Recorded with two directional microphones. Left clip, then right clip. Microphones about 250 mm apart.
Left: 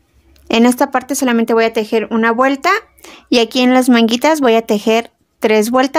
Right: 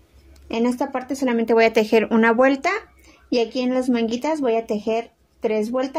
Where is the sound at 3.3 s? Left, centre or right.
Left.